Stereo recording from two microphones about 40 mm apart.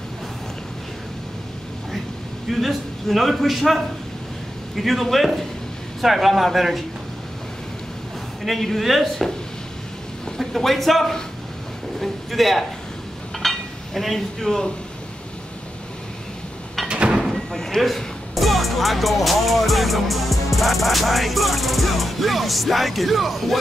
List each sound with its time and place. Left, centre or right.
2.4 s speech: centre
8.5 s speech: centre
10.3 s speech: centre
13.4 s dishes: centre
16.8 s a sound: right
17.5 s a sound: centre
17.8 s speech: centre